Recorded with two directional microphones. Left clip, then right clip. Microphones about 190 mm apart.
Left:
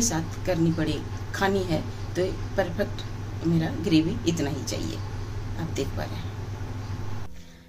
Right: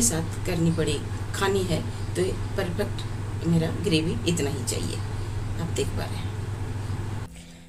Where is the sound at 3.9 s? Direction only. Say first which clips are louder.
Left 4 dB; 45° left (ahead or behind).